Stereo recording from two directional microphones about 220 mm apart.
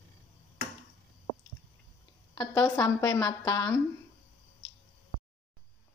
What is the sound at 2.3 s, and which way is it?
A child's voice, 15° left (ahead or behind).